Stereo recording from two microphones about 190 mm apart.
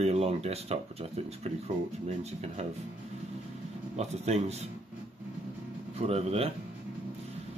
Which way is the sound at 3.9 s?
35° right (ahead or behind).